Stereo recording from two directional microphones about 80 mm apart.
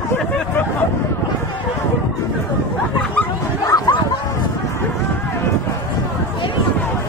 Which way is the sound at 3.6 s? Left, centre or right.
Left.